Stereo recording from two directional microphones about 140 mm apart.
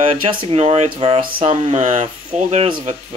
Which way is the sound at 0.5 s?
50° right (ahead or behind).